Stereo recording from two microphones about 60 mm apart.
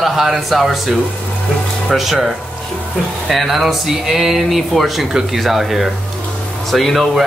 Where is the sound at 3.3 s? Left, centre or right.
Centre.